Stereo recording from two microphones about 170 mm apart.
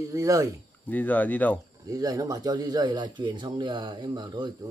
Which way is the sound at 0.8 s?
10° left (ahead or behind).